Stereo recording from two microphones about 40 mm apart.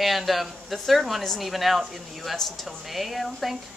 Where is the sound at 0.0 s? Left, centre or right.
Centre.